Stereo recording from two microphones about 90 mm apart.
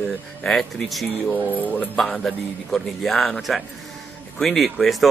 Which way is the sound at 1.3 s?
20° right (ahead or behind).